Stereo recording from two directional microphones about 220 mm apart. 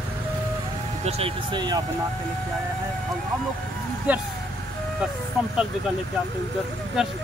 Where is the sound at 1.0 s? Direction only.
25° right (ahead or behind).